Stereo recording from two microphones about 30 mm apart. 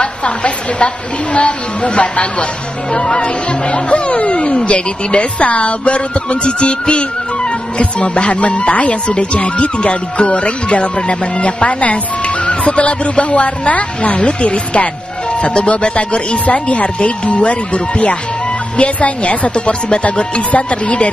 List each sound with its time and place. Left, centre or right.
0.0 s a woman's voice: left
2.9 s speech: left
3.9 s a woman's voice: left
9.0 s a woman's voice: left